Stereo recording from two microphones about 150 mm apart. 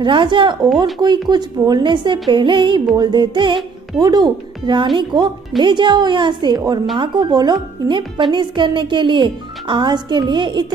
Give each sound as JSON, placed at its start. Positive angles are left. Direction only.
{"t": 0.0, "sound": "a woman's voice", "side_deg": -35}